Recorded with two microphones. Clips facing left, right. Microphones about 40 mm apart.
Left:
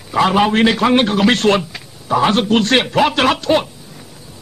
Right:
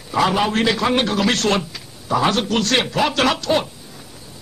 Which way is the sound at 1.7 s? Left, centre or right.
Left.